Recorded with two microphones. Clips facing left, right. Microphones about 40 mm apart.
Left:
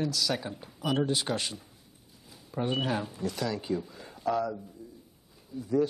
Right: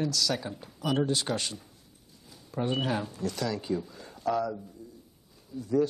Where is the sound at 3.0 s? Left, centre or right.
Centre.